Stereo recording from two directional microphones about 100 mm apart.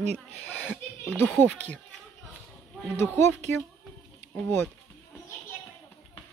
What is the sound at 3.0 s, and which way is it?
Speech, 25° left (ahead or behind).